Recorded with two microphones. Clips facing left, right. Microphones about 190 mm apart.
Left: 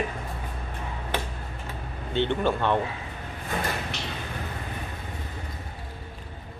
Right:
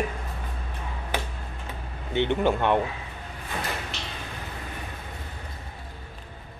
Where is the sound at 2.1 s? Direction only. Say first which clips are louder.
Right 2 dB; 15° right (ahead or behind).